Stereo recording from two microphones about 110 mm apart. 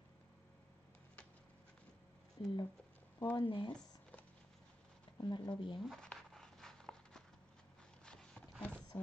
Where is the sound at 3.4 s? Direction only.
45° left (ahead or behind).